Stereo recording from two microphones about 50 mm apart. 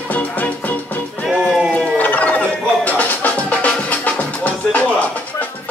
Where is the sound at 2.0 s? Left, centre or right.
Left.